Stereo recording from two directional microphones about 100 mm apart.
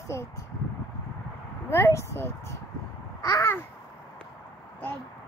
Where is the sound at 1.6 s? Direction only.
25° left (ahead or behind).